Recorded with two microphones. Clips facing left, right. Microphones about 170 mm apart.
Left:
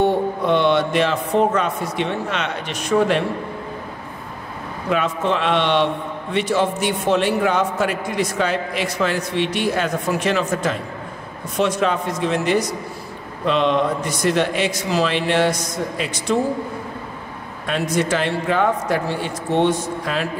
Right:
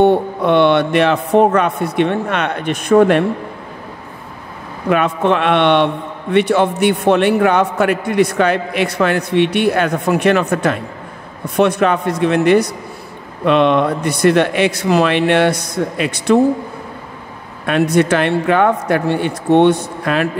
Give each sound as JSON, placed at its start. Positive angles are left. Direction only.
{"t": 0.0, "sound": "a man's voice", "side_deg": -65}
{"t": 4.8, "sound": "a man's voice", "side_deg": -60}
{"t": 17.6, "sound": "a man's voice", "side_deg": -60}